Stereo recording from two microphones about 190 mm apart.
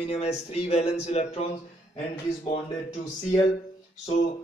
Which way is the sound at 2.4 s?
30° left (ahead or behind).